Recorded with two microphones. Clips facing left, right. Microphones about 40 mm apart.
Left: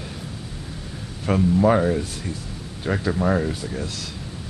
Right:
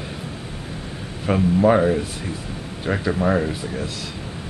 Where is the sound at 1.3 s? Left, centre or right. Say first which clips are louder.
Right 1 dB; centre.